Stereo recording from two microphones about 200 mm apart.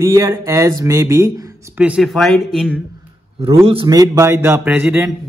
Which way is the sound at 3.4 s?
30° right (ahead or behind).